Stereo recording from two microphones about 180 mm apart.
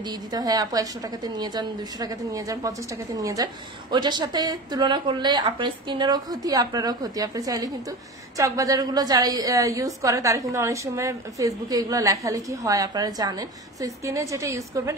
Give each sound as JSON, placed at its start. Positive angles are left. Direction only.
{"t": 0.3, "sound": "a woman's voice", "side_deg": -20}